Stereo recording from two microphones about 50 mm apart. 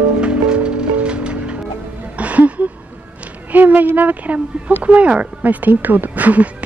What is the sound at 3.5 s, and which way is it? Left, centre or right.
Speech, right.